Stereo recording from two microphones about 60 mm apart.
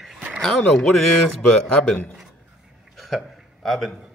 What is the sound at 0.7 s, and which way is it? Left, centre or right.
Speech, centre.